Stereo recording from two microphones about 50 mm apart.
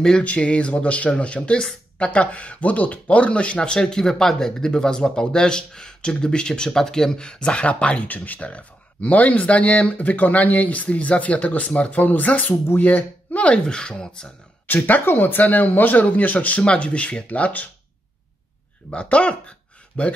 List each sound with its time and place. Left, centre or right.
0.2 s speech: left
14.7 s speech: left
18.9 s speech: left